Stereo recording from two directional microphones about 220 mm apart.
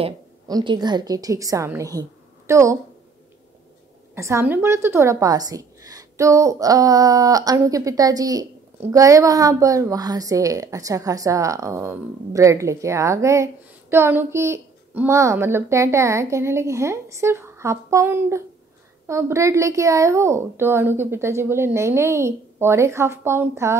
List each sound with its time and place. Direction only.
0.0 s a woman's voice: 20° right (ahead or behind)
4.1 s a woman's voice: 10° right (ahead or behind)